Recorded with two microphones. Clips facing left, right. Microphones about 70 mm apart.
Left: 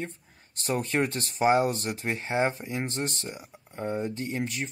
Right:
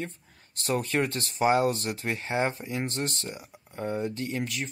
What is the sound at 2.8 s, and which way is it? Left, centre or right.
Speech, centre.